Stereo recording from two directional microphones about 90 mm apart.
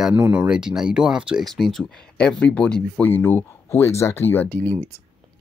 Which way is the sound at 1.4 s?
5° left (ahead or behind).